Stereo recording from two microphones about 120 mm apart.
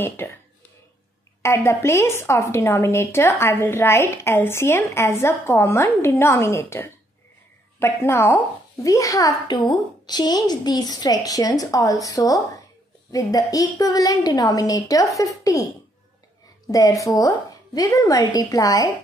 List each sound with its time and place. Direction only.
0.2 s speech: 20° left (ahead or behind)
1.4 s a woman's voice: 25° left (ahead or behind)
16.6 s a woman's voice: 30° left (ahead or behind)